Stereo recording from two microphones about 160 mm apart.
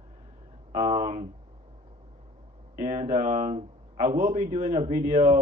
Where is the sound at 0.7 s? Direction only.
50° right (ahead or behind).